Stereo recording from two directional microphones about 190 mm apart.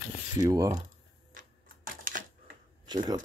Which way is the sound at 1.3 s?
45° right (ahead or behind).